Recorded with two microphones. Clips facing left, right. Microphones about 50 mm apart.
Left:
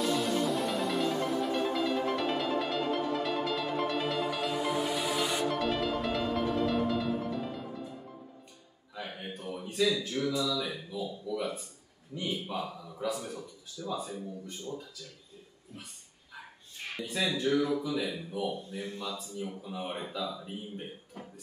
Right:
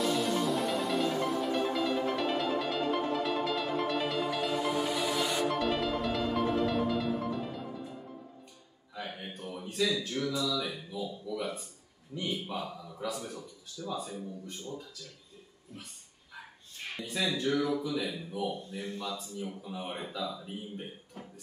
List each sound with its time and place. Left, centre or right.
0.1 s music: centre
5.6 s music: centre
8.9 s a man's voice: centre
16.9 s a man's voice: centre